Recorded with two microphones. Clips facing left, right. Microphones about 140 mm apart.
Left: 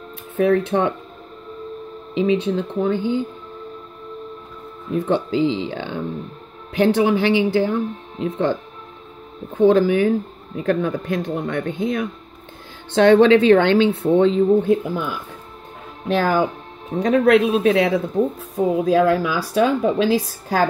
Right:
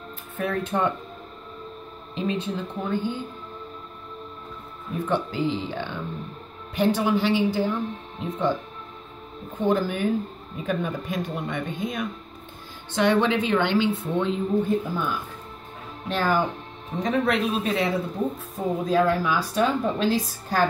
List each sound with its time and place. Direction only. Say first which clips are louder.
0.4 s speech: left 8 dB; 80° left
2.1 s speech: left 9 dB; 70° left (ahead or behind)
4.9 s speech: left 6 dB; 75° left (ahead or behind)
9.6 s speech: left 9 dB; 90° left
16.1 s speech: left 5 dB; 85° left
17.0 s speech: left 8 dB; 70° left (ahead or behind)